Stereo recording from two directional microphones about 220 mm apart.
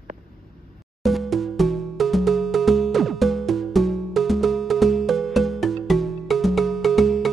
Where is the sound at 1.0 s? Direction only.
Centre (ahead or behind).